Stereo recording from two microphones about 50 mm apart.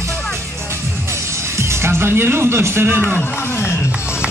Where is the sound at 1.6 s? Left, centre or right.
Right.